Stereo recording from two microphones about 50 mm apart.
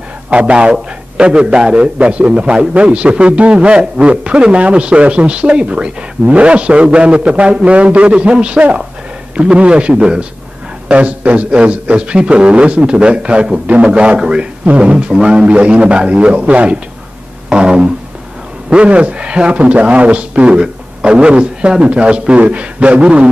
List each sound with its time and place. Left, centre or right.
0.3 s a man's voice: right